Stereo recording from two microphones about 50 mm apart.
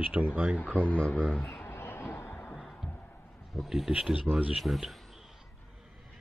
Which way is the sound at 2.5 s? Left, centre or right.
Centre.